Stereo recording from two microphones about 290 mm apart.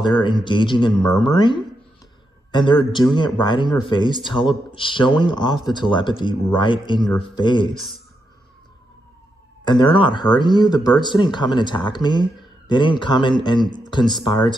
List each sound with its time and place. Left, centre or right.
0.0 s a man's voice: centre
9.7 s a man's voice: centre